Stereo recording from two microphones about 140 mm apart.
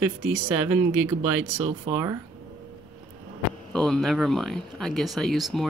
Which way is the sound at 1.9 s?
20° right (ahead or behind).